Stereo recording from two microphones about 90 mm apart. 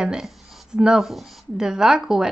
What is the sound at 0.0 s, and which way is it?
Speech, 5° right (ahead or behind).